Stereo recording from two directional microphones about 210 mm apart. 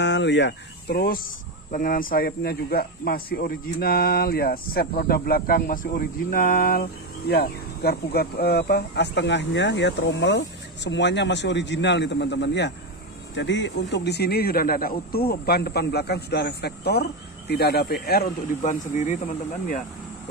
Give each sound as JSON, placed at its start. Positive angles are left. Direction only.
{"t": 0.0, "sound": "speech", "side_deg": 55}